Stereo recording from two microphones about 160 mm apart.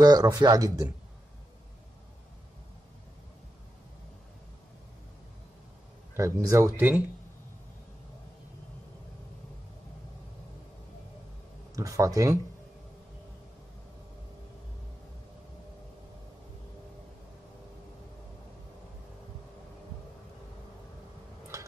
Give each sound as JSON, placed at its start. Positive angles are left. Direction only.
{"t": 0.0, "sound": "speech", "side_deg": -25}
{"t": 6.1, "sound": "speech", "side_deg": -20}
{"t": 11.7, "sound": "speech", "side_deg": -20}